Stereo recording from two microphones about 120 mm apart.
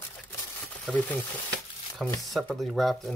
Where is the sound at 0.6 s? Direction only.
10° left (ahead or behind).